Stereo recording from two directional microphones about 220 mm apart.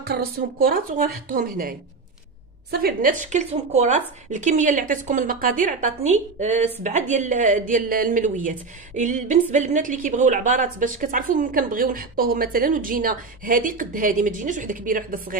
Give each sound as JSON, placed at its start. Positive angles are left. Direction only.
{"t": 0.0, "sound": "a woman's voice", "side_deg": -45}